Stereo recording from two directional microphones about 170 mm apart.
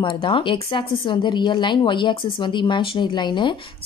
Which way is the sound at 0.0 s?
30° left (ahead or behind).